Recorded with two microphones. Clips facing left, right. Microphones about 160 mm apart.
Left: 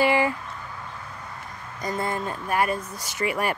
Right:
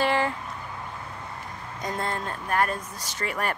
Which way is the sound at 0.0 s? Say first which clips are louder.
Left 3 dB; 10° left (ahead or behind).